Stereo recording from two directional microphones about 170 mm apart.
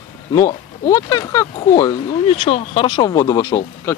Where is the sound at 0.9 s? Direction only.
20° left (ahead or behind).